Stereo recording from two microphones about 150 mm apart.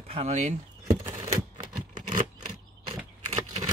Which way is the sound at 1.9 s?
55° right (ahead or behind).